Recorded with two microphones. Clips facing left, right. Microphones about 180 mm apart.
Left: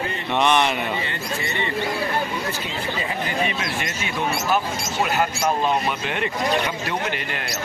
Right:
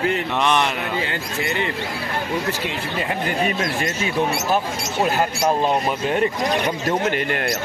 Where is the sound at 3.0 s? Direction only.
45° right (ahead or behind).